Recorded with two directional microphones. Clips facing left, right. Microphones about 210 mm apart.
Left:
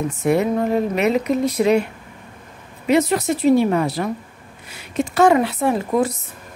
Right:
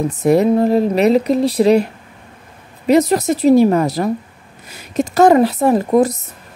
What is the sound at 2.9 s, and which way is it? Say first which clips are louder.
Speech: right 4 dB; 40° right (ahead or behind).